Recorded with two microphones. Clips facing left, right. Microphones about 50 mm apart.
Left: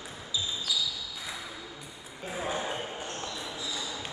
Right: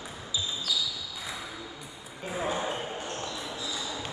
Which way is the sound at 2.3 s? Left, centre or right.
Centre.